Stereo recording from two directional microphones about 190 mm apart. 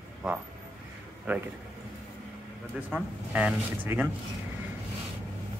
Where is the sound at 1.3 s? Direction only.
10° right (ahead or behind).